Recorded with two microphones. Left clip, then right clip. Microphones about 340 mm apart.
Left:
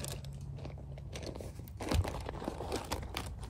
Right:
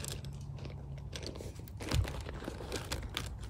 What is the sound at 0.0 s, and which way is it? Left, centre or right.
Biting, centre.